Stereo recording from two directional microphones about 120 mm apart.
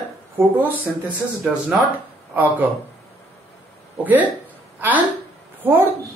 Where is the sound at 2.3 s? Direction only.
15° right (ahead or behind).